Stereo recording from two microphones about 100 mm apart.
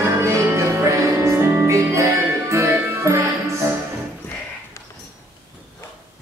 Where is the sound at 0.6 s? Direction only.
30° right (ahead or behind).